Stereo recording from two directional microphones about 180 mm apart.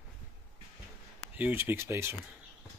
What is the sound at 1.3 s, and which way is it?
Speech, 10° right (ahead or behind).